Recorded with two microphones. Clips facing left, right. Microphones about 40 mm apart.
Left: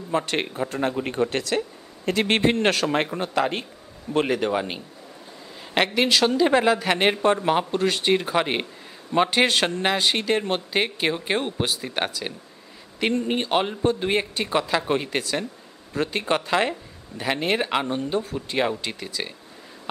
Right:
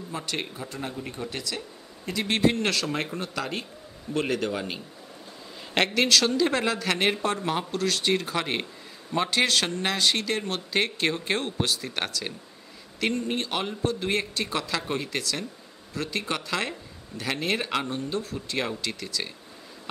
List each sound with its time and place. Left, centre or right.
0.1 s a man's voice: left